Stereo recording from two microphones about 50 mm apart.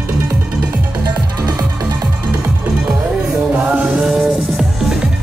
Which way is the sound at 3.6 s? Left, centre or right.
Right.